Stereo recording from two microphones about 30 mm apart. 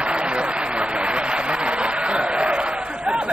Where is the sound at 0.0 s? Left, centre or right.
Right.